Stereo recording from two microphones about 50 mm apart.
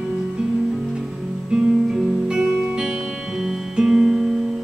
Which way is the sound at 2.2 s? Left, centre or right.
Centre.